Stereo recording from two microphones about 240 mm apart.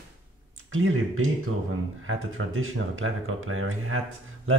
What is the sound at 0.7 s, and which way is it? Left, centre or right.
Speech, right.